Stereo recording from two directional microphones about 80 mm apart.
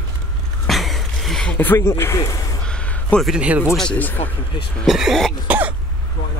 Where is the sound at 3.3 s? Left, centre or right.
Centre.